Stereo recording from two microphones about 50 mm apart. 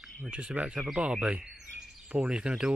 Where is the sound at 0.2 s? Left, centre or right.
Centre.